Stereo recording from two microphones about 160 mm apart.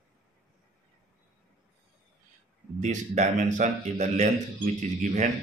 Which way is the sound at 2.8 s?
50° right (ahead or behind).